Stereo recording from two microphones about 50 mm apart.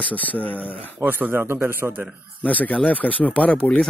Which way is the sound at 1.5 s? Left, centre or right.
Right.